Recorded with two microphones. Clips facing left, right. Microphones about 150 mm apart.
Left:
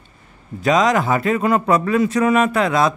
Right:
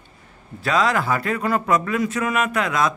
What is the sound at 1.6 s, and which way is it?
Speech, 30° left (ahead or behind).